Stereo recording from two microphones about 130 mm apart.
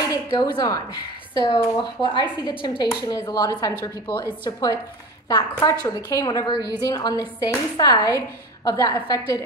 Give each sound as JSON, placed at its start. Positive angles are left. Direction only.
{"t": 0.1, "sound": "a woman's voice", "side_deg": 35}